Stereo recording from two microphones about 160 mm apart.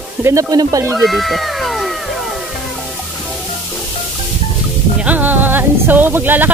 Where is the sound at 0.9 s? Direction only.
Centre (ahead or behind).